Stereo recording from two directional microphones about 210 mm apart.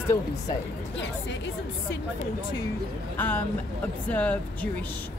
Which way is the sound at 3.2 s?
10° left (ahead or behind).